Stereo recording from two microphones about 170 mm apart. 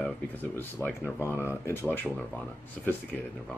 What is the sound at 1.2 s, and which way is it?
Speech, 15° left (ahead or behind).